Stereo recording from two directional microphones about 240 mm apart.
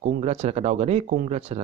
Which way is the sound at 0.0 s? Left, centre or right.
Right.